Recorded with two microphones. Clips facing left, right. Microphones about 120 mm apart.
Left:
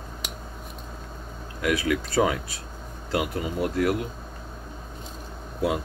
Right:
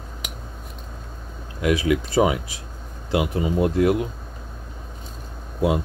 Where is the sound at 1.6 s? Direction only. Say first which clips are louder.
Right 4 dB; 20° right (ahead or behind).